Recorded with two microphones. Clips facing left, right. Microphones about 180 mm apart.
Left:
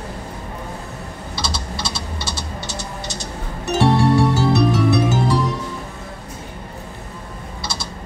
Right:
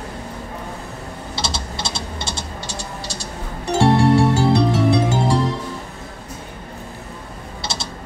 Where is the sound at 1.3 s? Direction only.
25° right (ahead or behind).